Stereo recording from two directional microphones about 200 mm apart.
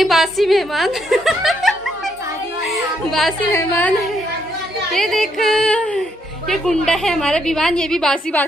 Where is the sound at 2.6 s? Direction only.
Centre (ahead or behind).